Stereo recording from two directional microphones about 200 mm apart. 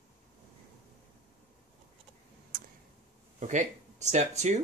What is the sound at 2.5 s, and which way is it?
Tick, 45° right (ahead or behind).